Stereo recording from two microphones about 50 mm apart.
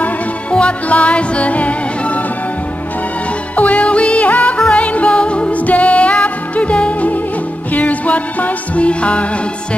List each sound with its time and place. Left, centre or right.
0.0 s music: left
3.5 s music: left